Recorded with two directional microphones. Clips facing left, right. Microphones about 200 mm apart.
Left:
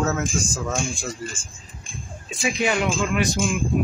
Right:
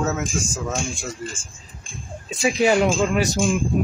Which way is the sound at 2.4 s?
35° right (ahead or behind).